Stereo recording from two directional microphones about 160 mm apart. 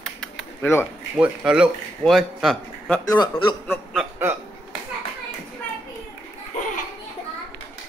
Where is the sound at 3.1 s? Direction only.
25° left (ahead or behind).